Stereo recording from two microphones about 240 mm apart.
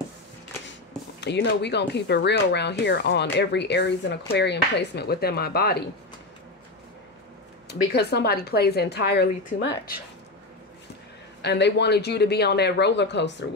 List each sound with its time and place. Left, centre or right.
1.2 s speech: left
7.9 s speech: left
11.4 s speech: left